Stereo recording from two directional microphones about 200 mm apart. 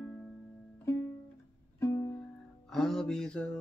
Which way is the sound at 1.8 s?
15° left (ahead or behind).